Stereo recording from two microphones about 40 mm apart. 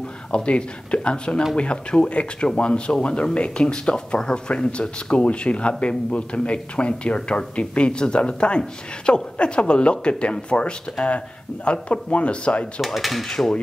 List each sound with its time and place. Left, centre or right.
0.3 s speech: left
12.8 s speech: centre
13.3 s cutlery: centre